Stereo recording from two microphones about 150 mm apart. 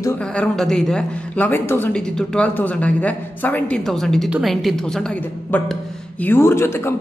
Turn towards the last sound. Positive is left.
turn(degrees=15)  # may be behind; listen again after turning